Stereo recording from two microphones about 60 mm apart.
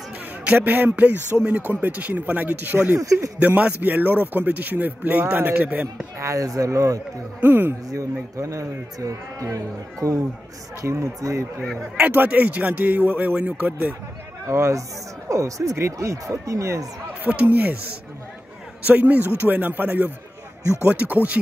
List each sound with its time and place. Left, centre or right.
0.5 s a man's voice: right
3.0 s speech: right
3.3 s a man's voice: right
6.1 s speech: right
7.3 s speech: right
7.9 s a man's voice: right
12.0 s a man's voice: right
14.4 s a man's voice: right
17.2 s a man's voice: right
18.9 s a man's voice: right